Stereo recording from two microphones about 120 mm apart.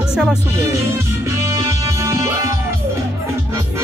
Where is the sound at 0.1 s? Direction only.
5° right (ahead or behind).